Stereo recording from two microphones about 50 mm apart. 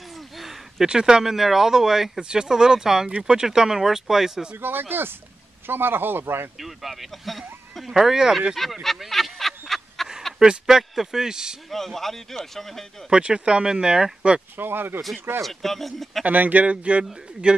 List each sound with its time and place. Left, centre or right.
0.4 s a sound: centre
0.8 s speech: centre
4.6 s speech: right
6.6 s speech: centre
8.8 s a sound: centre
10.4 s speech: centre
11.7 s speech: centre
13.1 s speech: centre
14.6 s speech: right
15.4 s speech: centre
16.3 s a man's voice: right